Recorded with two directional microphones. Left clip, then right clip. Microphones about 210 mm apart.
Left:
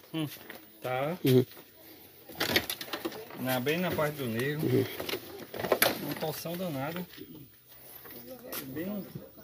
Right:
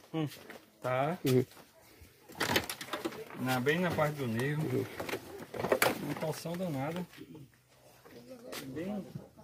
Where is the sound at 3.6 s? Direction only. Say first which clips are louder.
Right 1 dB; 45° right (ahead or behind).